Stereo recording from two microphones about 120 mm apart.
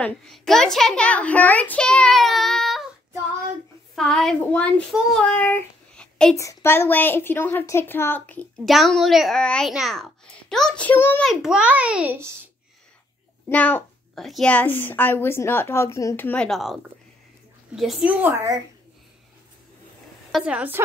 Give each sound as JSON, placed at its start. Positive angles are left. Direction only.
{"t": 0.0, "sound": "a child's voice", "side_deg": 5}
{"t": 3.9, "sound": "a woman's voice", "side_deg": 5}
{"t": 5.2, "sound": "child singing", "side_deg": 10}
{"t": 6.3, "sound": "a woman's voice", "side_deg": 20}
{"t": 8.6, "sound": "a child's voice", "side_deg": 0}
{"t": 9.4, "sound": "a child's voice", "side_deg": 10}
{"t": 11.2, "sound": "a child's voice", "side_deg": -5}
{"t": 13.5, "sound": "speech", "side_deg": 15}
{"t": 14.1, "sound": "a child's voice", "side_deg": 0}
{"t": 14.5, "sound": "speech", "side_deg": 15}
{"t": 16.3, "sound": "a child's voice", "side_deg": 5}
{"t": 20.4, "sound": "a child's voice", "side_deg": -15}